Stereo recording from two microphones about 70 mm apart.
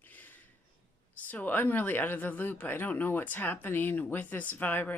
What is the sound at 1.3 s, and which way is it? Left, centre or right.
Speech, left.